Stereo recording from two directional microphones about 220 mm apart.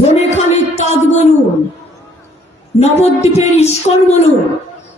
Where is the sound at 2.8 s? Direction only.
30° left (ahead or behind).